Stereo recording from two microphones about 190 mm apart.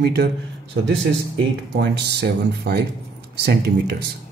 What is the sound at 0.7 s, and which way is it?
Speech, 75° right (ahead or behind).